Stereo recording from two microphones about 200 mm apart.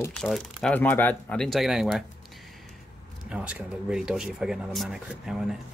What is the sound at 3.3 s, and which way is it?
Speech, 5° right (ahead or behind).